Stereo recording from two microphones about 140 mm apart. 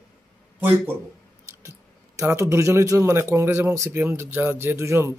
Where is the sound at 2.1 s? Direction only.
20° right (ahead or behind).